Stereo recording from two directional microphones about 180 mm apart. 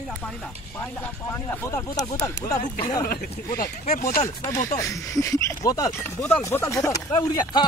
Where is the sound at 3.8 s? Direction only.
45° left (ahead or behind).